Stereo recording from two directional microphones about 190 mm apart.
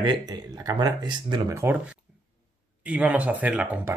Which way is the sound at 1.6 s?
10° right (ahead or behind).